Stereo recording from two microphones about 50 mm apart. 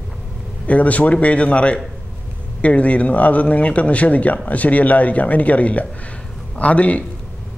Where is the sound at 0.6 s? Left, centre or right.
Left.